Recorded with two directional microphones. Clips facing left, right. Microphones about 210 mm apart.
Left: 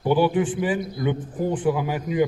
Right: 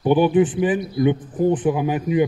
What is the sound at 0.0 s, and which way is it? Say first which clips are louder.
A man's voice: right 4 dB; 20° right (ahead or behind).